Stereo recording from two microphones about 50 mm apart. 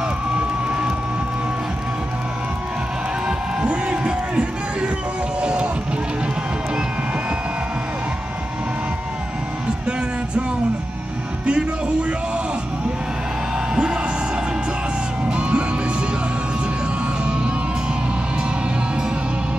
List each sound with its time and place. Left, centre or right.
0.4 s crowd: centre
3.3 s crowd: right
5.4 s music: centre
11.4 s music: centre
15.2 s music: right